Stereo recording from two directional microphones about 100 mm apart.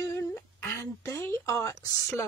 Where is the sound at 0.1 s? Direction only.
25° left (ahead or behind).